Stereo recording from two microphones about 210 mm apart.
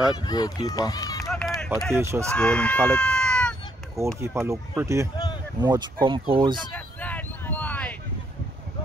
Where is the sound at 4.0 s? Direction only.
15° right (ahead or behind).